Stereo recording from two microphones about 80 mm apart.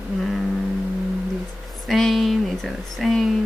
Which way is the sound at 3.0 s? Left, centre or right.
Centre.